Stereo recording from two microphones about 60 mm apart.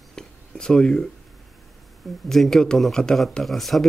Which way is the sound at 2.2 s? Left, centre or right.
Centre.